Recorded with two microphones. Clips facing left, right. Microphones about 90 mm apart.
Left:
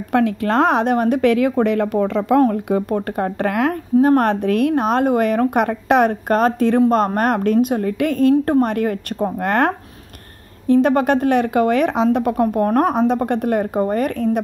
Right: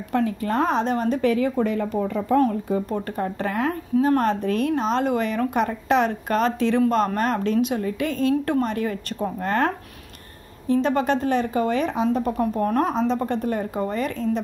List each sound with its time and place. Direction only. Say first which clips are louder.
0.1 s speech: left 6 dB; 80° left
2.5 s a woman's voice: left 5 dB; 60° left (ahead or behind)
13.7 s speech: left 6 dB; 50° left (ahead or behind)